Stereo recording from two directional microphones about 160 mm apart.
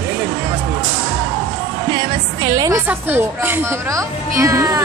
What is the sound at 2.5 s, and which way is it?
Speech, 20° right (ahead or behind).